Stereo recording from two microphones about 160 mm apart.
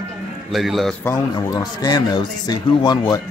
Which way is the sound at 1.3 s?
25° left (ahead or behind).